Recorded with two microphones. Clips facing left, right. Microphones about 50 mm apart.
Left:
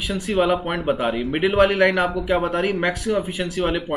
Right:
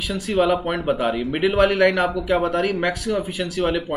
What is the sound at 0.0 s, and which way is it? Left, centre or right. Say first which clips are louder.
Speech: even; centre.